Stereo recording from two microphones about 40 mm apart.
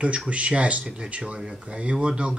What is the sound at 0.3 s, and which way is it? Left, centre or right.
Speech, right.